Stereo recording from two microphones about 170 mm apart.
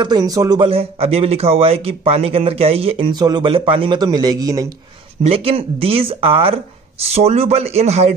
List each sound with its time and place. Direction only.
0.0 s a man's voice: 25° right (ahead or behind)
5.2 s a man's voice: 35° right (ahead or behind)